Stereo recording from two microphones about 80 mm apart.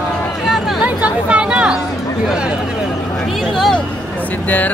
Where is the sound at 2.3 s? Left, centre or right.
Centre.